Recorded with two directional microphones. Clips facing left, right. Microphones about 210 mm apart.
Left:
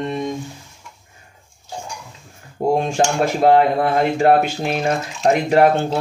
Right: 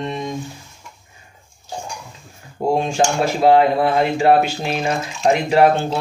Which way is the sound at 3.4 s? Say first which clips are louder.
Right 1 dB; 50° left (ahead or behind).